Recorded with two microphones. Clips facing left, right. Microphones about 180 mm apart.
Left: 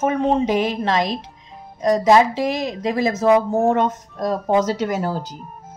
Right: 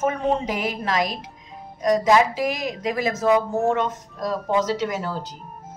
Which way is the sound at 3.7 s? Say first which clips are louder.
Left 4 dB; 45° left (ahead or behind).